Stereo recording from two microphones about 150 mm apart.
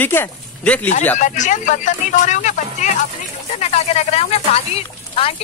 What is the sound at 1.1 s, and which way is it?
Speech, 55° left (ahead or behind).